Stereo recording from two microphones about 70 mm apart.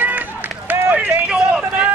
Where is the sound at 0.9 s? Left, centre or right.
Centre.